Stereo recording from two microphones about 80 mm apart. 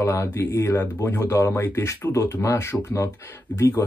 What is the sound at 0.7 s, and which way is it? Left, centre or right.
Speech, left.